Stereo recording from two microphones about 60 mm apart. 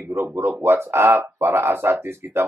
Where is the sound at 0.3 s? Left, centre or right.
Right.